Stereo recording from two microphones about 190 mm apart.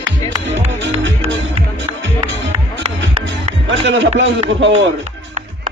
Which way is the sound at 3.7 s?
75° right (ahead or behind).